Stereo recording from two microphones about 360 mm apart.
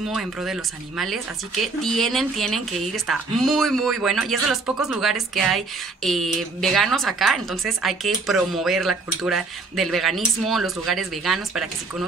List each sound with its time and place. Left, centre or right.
0.1 s a woman's voice: centre